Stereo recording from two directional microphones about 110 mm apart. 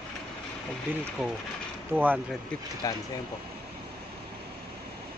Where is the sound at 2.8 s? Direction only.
35° left (ahead or behind).